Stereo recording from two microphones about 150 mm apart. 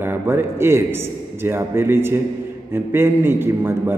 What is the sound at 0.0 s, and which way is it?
A man's voice, 15° right (ahead or behind).